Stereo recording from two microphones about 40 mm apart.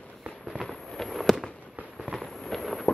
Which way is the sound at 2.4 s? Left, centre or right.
Centre.